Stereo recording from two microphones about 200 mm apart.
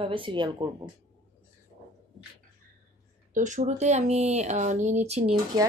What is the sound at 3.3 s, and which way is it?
Speech, 40° right (ahead or behind).